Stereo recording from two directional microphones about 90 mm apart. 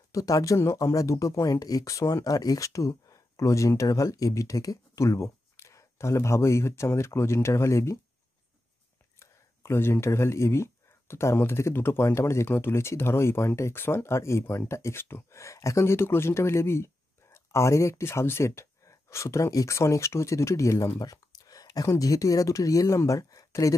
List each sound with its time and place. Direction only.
0.1 s speech: 40° left (ahead or behind)
9.2 s speech: 30° left (ahead or behind)